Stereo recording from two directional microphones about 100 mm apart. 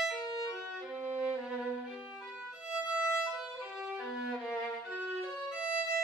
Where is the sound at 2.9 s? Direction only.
5° right (ahead or behind).